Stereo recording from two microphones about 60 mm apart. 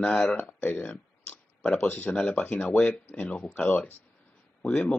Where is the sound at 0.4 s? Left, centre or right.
Left.